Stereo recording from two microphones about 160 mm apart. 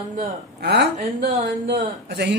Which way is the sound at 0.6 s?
90° right.